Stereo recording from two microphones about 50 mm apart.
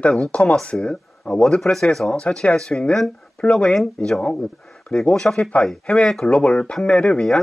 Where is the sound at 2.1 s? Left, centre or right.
Left.